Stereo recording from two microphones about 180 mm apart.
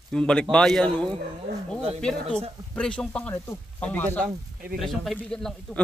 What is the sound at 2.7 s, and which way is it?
Speech, 5° left (ahead or behind).